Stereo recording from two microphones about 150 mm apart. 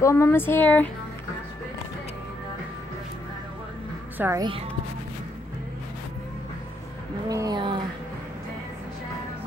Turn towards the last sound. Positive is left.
turn(degrees=-30)  # may be behind; listen again after turning